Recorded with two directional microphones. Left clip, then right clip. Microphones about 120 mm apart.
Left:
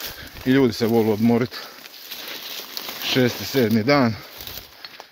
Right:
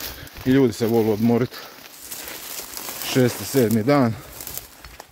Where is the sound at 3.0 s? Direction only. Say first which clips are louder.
Even; 55° right (ahead or behind); by 4.1 s 40° right (ahead or behind).